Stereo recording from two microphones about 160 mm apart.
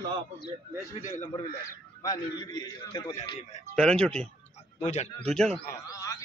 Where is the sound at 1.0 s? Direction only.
55° left (ahead or behind).